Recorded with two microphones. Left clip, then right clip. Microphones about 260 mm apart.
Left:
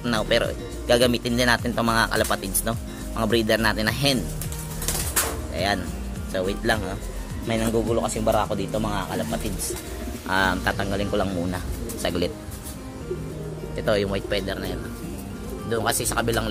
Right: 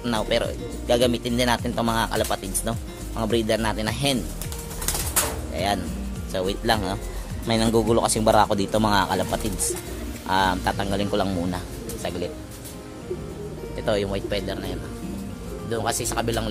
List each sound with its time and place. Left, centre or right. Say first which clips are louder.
0.0 s speech: left 1 dB; centre
6.3 s speech: right 1 dB; centre
10.2 s speech: right 1 dB; centre
12.0 s speech: left 4 dB; centre
13.7 s speech: left 1 dB; centre